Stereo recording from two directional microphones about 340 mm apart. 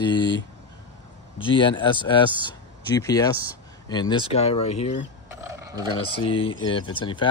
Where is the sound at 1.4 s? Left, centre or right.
Centre.